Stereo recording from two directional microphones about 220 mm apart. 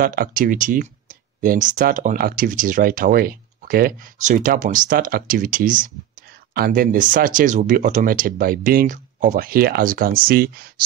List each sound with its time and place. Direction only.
0.0 s speech: 40° right (ahead or behind)